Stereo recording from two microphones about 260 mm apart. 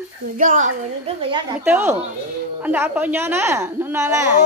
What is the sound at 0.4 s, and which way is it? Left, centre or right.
Speech, right.